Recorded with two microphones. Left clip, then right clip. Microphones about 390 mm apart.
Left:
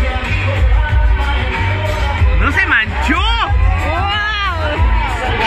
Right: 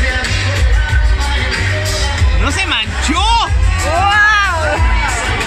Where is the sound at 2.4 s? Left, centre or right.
Centre.